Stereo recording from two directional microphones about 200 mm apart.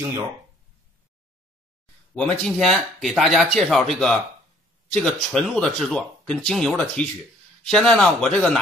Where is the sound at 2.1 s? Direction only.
5° left (ahead or behind).